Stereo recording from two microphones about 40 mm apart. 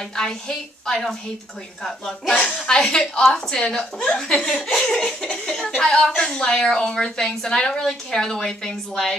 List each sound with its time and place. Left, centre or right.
0.1 s a woman's voice: centre
4.4 s a woman's voice: left
7.8 s a woman's voice: centre